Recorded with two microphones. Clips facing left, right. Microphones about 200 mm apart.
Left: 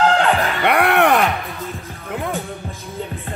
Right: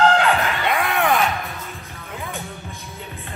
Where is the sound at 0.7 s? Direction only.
70° left (ahead or behind).